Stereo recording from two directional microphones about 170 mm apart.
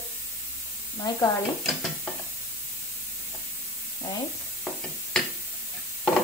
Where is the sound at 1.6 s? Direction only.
Centre (ahead or behind).